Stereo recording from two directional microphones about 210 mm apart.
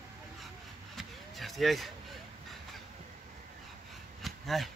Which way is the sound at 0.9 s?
Centre (ahead or behind).